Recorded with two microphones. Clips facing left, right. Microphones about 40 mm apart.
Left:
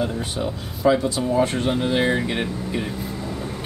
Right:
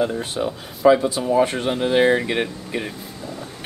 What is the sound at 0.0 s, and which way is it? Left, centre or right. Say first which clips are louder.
Speech: right 3 dB; centre.